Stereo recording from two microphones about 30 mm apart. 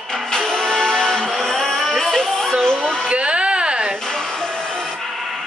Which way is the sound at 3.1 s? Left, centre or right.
Right.